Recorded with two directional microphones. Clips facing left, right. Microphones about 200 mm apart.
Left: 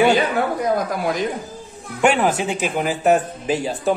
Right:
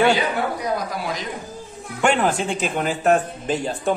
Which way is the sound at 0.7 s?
50° left (ahead or behind).